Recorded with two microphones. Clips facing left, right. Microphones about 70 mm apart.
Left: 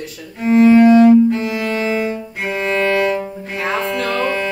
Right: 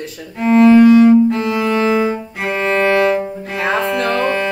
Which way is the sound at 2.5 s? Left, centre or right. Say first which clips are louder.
Right 3 dB; right.